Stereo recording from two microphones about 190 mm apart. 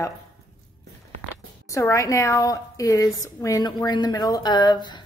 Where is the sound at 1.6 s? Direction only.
15° left (ahead or behind).